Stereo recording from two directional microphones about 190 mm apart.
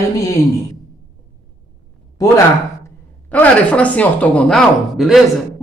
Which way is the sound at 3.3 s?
5° left (ahead or behind).